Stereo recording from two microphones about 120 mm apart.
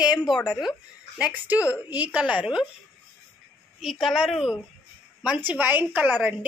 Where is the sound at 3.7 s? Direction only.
5° right (ahead or behind).